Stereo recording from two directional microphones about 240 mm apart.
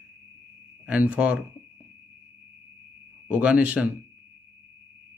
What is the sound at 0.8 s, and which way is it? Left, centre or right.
Speech, centre.